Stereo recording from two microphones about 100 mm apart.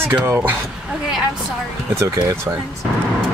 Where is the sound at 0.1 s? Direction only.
20° right (ahead or behind).